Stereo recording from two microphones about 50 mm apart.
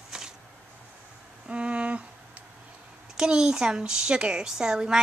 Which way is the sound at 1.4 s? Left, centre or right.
Right.